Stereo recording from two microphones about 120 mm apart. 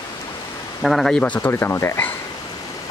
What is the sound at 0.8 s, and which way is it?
Speech, centre (ahead or behind).